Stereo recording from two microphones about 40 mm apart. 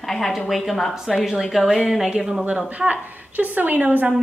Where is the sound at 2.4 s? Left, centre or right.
Right.